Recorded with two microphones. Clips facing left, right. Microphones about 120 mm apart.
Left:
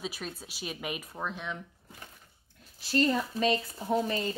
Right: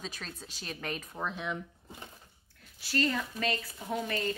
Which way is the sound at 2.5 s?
20° left (ahead or behind).